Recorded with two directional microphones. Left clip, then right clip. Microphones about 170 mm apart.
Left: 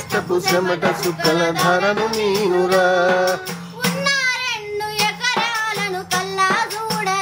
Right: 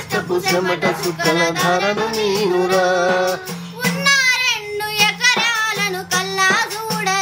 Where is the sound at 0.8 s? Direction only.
25° left (ahead or behind).